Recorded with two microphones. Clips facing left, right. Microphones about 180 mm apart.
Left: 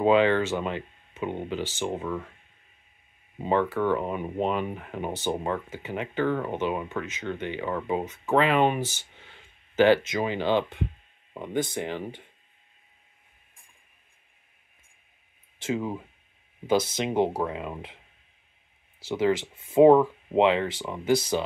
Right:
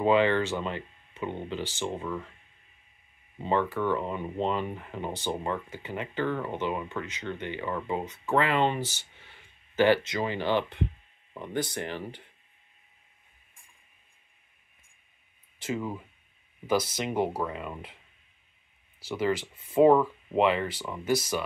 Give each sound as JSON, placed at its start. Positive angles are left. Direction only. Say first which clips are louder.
{"t": 0.0, "sound": "speech", "louder": "left 3 dB", "side_deg": 15}
{"t": 3.3, "sound": "speech", "louder": "left 3 dB", "side_deg": 15}
{"t": 15.7, "sound": "speech", "louder": "left 3 dB", "side_deg": 20}
{"t": 18.9, "sound": "speech", "louder": "left 4 dB", "side_deg": 20}